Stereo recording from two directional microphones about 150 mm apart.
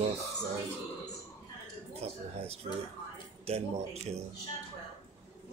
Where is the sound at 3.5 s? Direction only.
45° right (ahead or behind).